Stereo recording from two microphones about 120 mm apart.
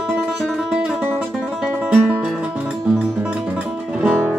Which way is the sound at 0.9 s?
15° right (ahead or behind).